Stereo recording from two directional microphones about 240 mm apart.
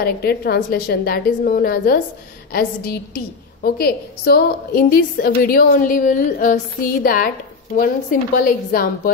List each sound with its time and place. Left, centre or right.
0.0 s a woman's voice: left
3.6 s a woman's voice: left